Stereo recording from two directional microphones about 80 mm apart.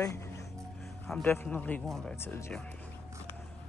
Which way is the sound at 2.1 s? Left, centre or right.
Left.